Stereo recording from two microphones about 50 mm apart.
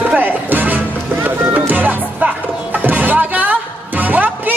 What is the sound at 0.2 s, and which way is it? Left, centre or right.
Music, right.